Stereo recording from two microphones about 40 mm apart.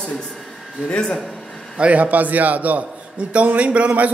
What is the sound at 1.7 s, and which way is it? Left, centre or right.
A man's voice, right.